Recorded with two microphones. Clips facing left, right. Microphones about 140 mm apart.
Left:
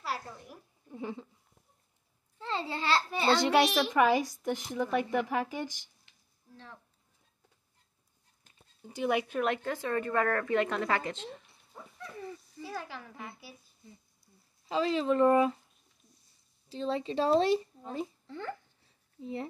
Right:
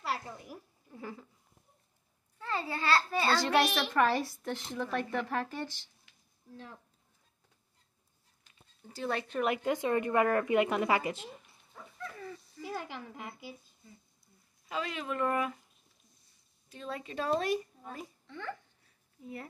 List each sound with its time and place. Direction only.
0.0 s a sound: centre (ahead or behind)
0.9 s speech: 20° left (ahead or behind)
2.3 s a child's voice: 25° left (ahead or behind)
8.8 s speech: 15° left (ahead or behind)
9.6 s a woman's voice: 15° right (ahead or behind)
11.7 s dog: 20° left (ahead or behind)
12.6 s a woman's voice: 20° right (ahead or behind)
14.7 s speech: 30° left (ahead or behind)
16.6 s speech: 30° left (ahead or behind)
18.2 s a sound: 35° left (ahead or behind)